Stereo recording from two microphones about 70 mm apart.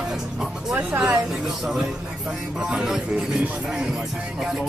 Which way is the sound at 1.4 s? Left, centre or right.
Centre.